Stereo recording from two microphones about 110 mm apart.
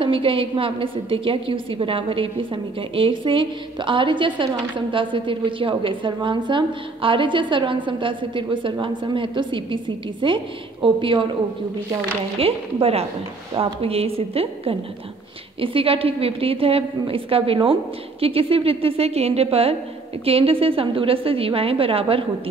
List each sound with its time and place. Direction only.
0.0 s a woman's voice: 50° right (ahead or behind)
12.4 s a woman's voice: 60° right (ahead or behind)